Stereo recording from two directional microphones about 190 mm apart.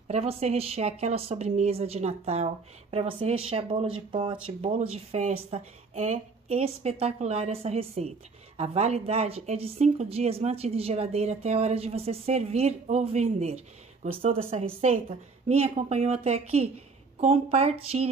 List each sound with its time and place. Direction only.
0.1 s a woman's voice: 35° right (ahead or behind)